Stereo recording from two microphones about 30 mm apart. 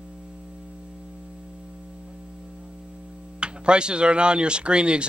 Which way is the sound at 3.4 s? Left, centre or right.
Right.